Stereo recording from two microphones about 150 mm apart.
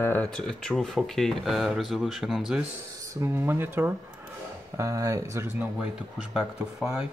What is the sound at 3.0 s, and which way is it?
Speech, 20° right (ahead or behind).